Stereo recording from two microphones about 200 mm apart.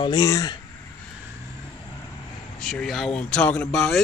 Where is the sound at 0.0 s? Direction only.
20° left (ahead or behind).